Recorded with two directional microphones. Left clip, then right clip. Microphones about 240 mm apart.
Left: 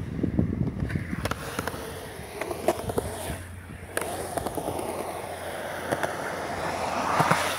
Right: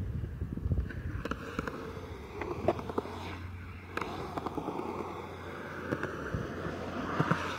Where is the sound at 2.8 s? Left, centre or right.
Right.